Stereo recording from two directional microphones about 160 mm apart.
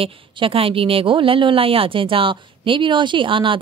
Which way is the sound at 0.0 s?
35° right (ahead or behind).